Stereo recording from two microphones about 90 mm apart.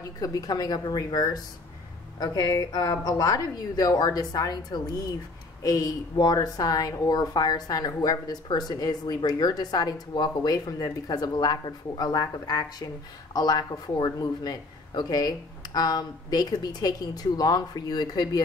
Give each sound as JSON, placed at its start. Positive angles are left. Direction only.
{"t": 0.2, "sound": "a woman's voice", "side_deg": 45}